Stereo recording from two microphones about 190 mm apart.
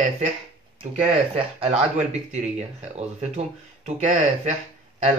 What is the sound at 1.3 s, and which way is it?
Speech, 35° right (ahead or behind).